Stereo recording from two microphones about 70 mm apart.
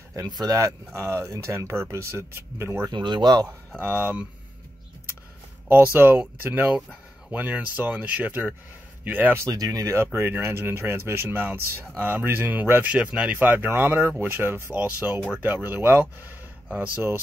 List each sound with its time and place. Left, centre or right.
0.5 s speech: right
2.9 s speech: right
3.8 s speech: right
5.9 s speech: right
9.4 s speech: right
10.1 s speech: right
12.9 s speech: centre